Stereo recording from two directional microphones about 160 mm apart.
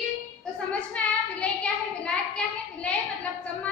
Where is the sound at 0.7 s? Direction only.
10° left (ahead or behind).